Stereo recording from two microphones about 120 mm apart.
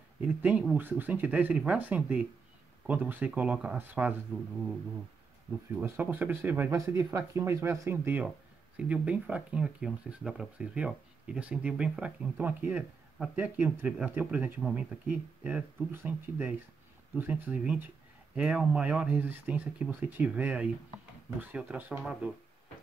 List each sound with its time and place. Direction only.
0.2 s speech: 10° right (ahead or behind)
5.8 s speech: 20° right (ahead or behind)